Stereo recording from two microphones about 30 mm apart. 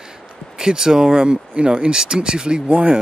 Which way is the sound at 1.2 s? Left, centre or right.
Right.